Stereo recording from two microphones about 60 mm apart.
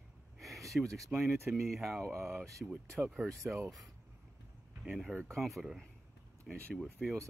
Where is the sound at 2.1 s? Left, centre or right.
Right.